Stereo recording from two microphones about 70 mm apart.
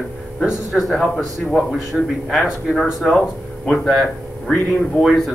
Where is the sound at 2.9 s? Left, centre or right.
Centre.